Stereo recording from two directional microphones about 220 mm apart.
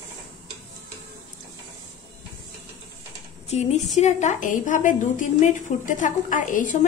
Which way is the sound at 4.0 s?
30° left (ahead or behind).